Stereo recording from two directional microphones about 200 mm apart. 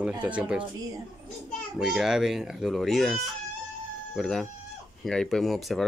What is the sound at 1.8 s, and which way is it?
Speech, centre (ahead or behind).